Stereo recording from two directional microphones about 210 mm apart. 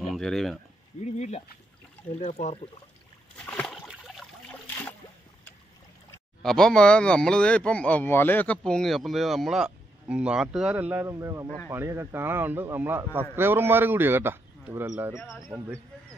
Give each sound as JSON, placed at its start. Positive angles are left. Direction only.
{"t": 0.0, "sound": "speech", "side_deg": 0}
{"t": 1.0, "sound": "speech", "side_deg": 35}
{"t": 3.3, "sound": "a sound", "side_deg": 5}
{"t": 6.4, "sound": "speech", "side_deg": 5}
{"t": 11.4, "sound": "speech", "side_deg": 10}
{"t": 11.7, "sound": "a man's voice", "side_deg": -10}
{"t": 15.1, "sound": "speech", "side_deg": 10}
{"t": 15.5, "sound": "a man's voice", "side_deg": -10}